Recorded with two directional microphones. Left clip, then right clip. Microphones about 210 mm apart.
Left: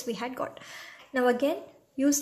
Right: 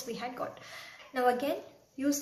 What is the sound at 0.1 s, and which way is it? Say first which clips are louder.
Speech: left 4 dB; 45° left (ahead or behind).